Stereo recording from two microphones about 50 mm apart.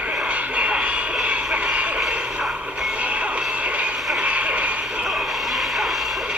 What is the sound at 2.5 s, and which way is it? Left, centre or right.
Music, right.